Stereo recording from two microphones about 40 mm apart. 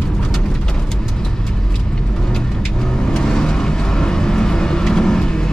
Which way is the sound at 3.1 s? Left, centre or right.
Centre.